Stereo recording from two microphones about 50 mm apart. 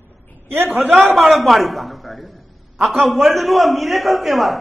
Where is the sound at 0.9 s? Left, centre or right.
Centre.